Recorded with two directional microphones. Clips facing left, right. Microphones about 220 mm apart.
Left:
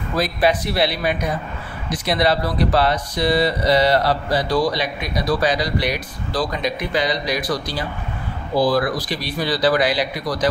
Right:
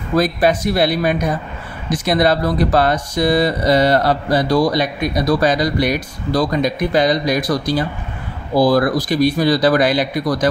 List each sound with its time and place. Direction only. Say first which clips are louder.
0.2 s speech: right 2 dB; 45° right (ahead or behind)